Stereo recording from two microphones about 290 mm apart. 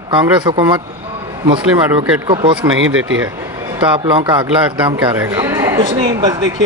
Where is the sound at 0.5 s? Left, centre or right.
Centre.